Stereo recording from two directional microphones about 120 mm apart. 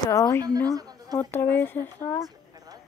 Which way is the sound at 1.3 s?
20° left (ahead or behind).